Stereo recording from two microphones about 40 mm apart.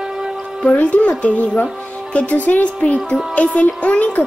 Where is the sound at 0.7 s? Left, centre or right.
Left.